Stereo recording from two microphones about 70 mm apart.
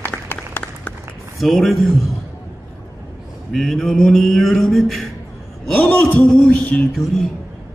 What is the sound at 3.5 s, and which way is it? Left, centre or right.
Speech, centre.